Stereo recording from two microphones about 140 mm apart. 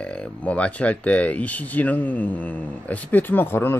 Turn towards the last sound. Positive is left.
turn(degrees=15)  # may be behind; listen again after turning